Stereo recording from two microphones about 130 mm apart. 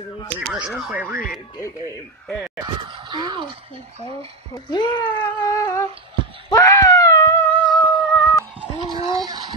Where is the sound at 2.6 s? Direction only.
35° right (ahead or behind).